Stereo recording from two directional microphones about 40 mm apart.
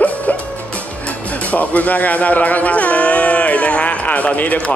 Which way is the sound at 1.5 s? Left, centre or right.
Left.